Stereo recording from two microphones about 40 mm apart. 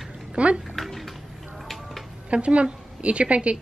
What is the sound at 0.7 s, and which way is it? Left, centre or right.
Bathtub, centre.